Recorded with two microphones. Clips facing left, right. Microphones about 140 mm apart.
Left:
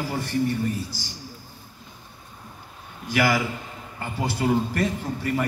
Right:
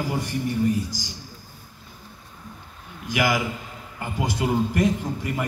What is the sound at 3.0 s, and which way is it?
A man's voice, 15° right (ahead or behind).